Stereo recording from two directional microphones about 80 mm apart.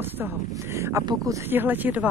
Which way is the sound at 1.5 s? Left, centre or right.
Right.